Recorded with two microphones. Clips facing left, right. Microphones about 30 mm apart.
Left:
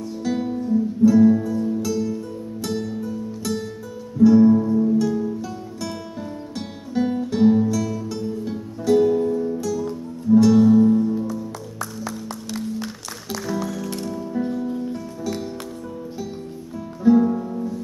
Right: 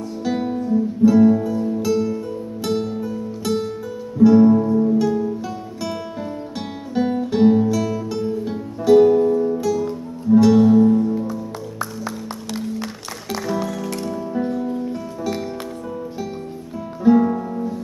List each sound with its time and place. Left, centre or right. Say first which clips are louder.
0.2 s music: right 2 dB; centre
6.9 s music: right 2 dB; centre
13.3 s music: right 3 dB; right
17.0 s music: right 1 dB; right